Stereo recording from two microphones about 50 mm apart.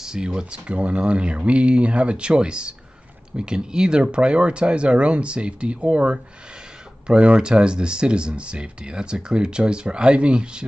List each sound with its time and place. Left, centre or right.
0.0 s speech: centre